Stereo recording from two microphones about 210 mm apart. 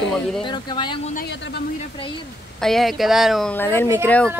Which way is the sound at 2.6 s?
Centre (ahead or behind).